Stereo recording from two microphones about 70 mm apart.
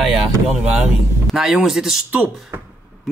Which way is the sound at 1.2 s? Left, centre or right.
Centre.